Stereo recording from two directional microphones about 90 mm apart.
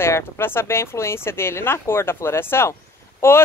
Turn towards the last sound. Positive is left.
turn(degrees=30)  # may be behind; listen again after turning